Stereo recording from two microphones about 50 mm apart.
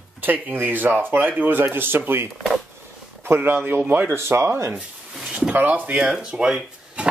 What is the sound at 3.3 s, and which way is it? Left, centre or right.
Speech, right.